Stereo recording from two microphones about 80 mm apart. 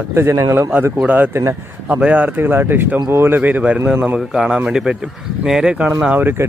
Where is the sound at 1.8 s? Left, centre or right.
Centre.